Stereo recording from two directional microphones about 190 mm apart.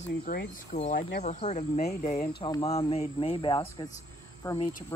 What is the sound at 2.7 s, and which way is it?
Speech, 30° left (ahead or behind).